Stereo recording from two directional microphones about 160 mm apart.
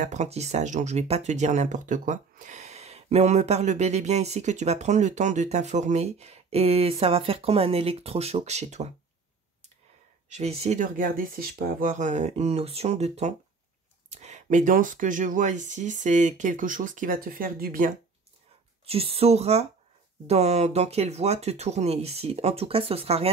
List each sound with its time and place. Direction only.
0.0 s speech: 50° right (ahead or behind)
10.3 s speech: 40° right (ahead or behind)
10.8 s speech: 60° right (ahead or behind)
18.9 s speech: 35° right (ahead or behind)